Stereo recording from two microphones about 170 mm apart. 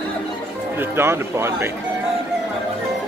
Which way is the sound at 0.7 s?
15° right (ahead or behind).